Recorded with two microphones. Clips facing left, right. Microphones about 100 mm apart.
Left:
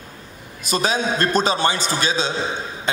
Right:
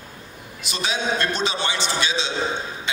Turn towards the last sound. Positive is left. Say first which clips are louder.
# left 5 dB
turn(degrees=40)  # may be behind; listen again after turning